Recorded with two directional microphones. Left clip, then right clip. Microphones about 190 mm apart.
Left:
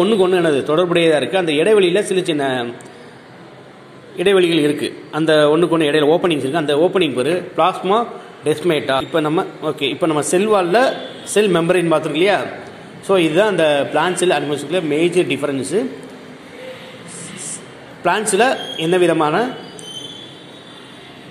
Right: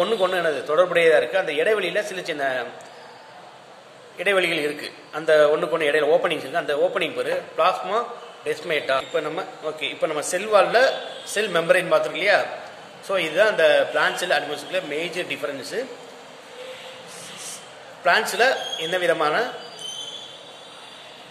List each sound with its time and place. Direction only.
0.0 s a man's voice: 20° left (ahead or behind)
4.2 s a man's voice: 25° left (ahead or behind)
18.3 s a man's voice: 20° left (ahead or behind)